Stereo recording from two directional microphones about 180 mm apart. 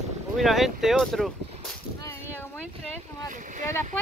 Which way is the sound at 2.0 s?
15° left (ahead or behind).